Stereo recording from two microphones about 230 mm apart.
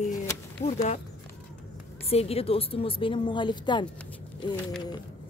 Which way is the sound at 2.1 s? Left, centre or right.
Left.